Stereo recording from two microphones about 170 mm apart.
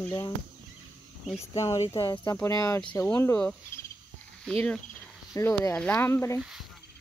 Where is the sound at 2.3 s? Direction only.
20° left (ahead or behind).